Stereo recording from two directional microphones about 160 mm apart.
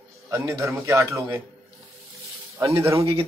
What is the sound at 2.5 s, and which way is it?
Speech, 20° right (ahead or behind).